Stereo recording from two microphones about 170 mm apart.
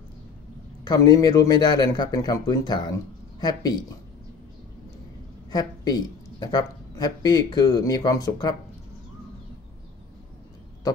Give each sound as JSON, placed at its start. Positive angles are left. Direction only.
{"t": 0.8, "sound": "a man's voice", "side_deg": 20}
{"t": 5.5, "sound": "a man's voice", "side_deg": 25}